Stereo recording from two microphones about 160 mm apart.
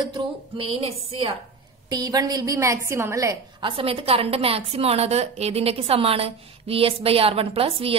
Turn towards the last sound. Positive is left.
turn(degrees=-35)  # may be behind; listen again after turning